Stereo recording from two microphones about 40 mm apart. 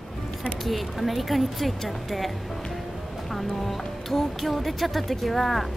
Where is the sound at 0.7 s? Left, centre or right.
Centre.